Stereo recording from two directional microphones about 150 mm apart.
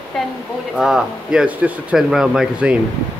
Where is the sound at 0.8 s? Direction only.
5° right (ahead or behind).